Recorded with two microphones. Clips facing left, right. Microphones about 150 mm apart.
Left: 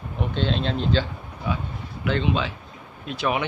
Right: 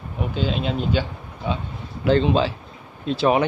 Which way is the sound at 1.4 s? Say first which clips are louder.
Right 2 dB; 25° right (ahead or behind).